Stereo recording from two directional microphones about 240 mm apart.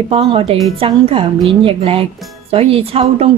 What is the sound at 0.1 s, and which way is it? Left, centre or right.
A woman's voice, right.